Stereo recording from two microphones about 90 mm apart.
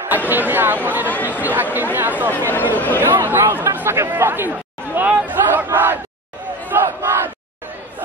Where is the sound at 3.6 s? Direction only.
30° right (ahead or behind).